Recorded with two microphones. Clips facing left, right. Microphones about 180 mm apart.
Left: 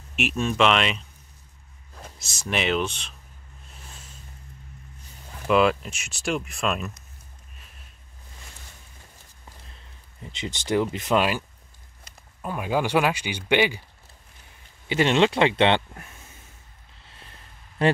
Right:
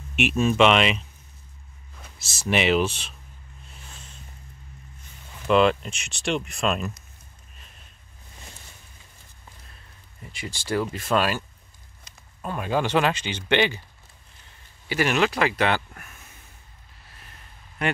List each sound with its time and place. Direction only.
0.1 s speech: centre (ahead or behind)
2.1 s speech: 5° right (ahead or behind)
5.5 s speech: 5° left (ahead or behind)
10.2 s speech: 20° left (ahead or behind)
14.9 s speech: 25° left (ahead or behind)
17.0 s music: 25° left (ahead or behind)
17.8 s speech: 30° left (ahead or behind)